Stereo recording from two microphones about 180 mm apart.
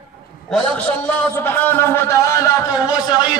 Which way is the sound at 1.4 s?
10° left (ahead or behind).